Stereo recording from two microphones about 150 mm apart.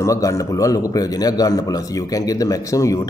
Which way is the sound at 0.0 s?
20° left (ahead or behind).